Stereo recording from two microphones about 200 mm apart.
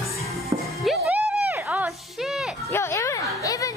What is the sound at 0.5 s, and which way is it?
Music, 25° right (ahead or behind).